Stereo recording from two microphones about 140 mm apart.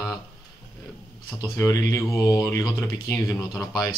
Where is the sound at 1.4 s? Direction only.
25° left (ahead or behind).